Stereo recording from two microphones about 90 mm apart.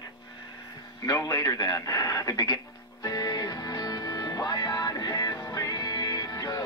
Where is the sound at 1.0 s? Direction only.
45° left (ahead or behind).